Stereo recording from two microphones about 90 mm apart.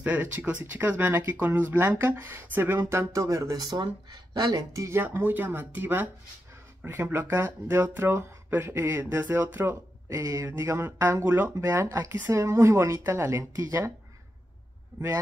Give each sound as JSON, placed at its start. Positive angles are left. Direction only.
{"t": 0.0, "sound": "speech", "side_deg": -20}
{"t": 2.9, "sound": "speech", "side_deg": -35}
{"t": 4.8, "sound": "speech", "side_deg": -25}